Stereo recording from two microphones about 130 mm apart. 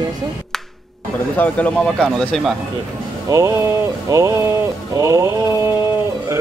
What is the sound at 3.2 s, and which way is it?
Speech, 25° right (ahead or behind).